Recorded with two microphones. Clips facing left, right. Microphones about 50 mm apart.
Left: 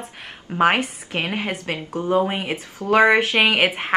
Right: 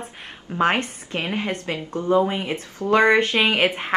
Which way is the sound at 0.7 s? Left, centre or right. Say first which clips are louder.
Left 2 dB; centre.